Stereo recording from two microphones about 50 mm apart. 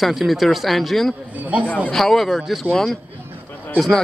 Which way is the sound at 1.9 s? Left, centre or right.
Centre.